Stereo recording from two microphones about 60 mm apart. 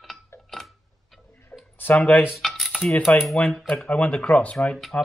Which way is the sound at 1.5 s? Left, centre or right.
Left.